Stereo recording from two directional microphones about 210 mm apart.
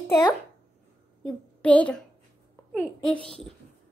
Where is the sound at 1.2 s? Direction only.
5° left (ahead or behind).